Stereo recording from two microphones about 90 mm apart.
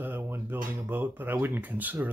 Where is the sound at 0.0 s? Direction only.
25° right (ahead or behind).